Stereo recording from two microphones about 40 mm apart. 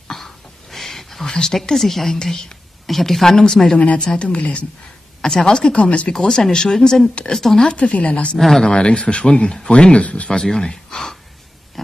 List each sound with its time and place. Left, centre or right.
0.1 s a sound: centre
1.3 s a woman's voice: centre
3.7 s speech: left
5.2 s speech: centre
5.8 s speech: left
6.1 s a woman's voice: centre; by 8.4 s left
8.4 s a woman's voice: centre
8.6 s a woman's voice: left
10.3 s speech: centre